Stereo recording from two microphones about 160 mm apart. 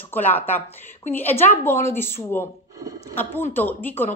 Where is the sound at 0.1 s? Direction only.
10° left (ahead or behind).